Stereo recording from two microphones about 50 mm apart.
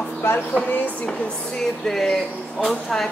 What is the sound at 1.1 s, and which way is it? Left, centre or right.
Speech, centre.